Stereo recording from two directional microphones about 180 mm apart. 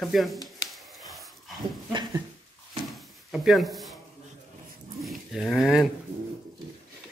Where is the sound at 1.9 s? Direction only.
25° right (ahead or behind).